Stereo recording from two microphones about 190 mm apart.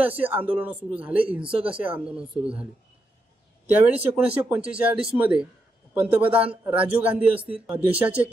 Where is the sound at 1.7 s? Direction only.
5° right (ahead or behind).